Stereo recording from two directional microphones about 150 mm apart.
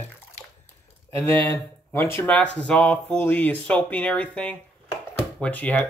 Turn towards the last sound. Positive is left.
turn(degrees=10)  # may be behind; listen again after turning